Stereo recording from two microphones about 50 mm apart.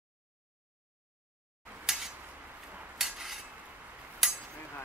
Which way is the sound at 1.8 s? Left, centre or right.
Centre.